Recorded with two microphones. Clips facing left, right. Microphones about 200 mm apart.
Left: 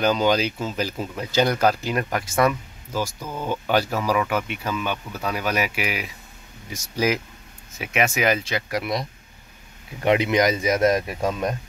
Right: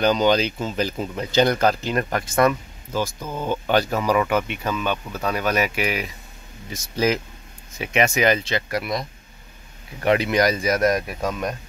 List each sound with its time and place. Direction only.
0.0 s speech: 5° left (ahead or behind)
9.9 s speech: 20° left (ahead or behind)